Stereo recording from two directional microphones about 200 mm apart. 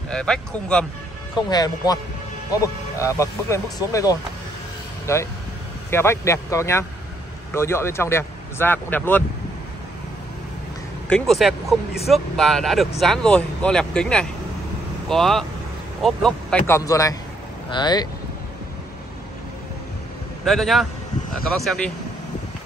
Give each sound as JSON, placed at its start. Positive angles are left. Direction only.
{"t": 0.1, "sound": "speech", "side_deg": 5}
{"t": 1.3, "sound": "speech", "side_deg": 20}
{"t": 11.1, "sound": "speech", "side_deg": 0}
{"t": 20.4, "sound": "speech", "side_deg": 0}